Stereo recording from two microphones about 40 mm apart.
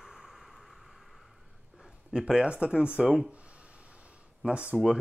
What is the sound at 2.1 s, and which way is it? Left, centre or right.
Speech, centre.